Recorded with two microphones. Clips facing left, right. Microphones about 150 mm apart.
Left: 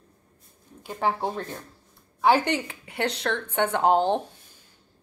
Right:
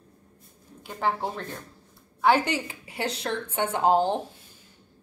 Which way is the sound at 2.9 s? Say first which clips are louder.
Left 3 dB; 65° left (ahead or behind).